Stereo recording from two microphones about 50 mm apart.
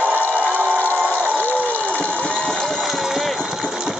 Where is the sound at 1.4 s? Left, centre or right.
Left.